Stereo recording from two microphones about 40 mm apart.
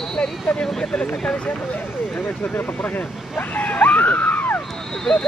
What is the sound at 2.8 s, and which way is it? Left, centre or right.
Speech, left.